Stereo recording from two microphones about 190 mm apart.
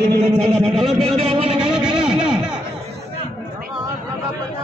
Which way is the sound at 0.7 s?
Centre (ahead or behind).